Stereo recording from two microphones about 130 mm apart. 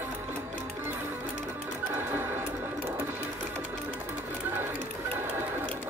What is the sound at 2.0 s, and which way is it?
Music, 15° right (ahead or behind).